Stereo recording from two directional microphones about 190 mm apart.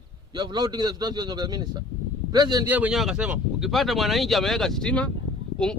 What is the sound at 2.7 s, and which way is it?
Speech, 5° right (ahead or behind).